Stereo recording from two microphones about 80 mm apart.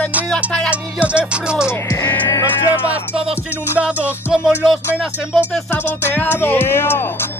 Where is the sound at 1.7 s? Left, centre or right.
Left.